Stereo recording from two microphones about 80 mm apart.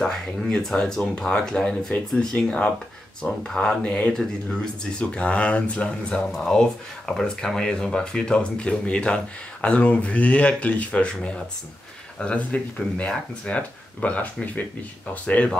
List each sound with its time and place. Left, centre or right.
0.0 s speech: centre
12.2 s speech: centre